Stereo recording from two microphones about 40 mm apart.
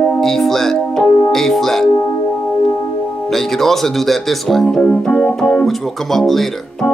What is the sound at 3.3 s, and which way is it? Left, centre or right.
Speech, centre.